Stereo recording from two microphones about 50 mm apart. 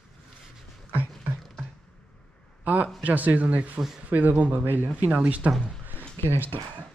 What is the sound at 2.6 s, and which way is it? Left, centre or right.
A man's voice, right.